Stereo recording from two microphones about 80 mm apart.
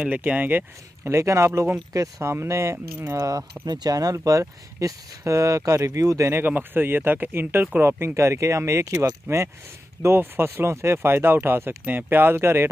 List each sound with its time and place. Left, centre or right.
0.0 s speech: centre
1.0 s speech: right
6.4 s speech: right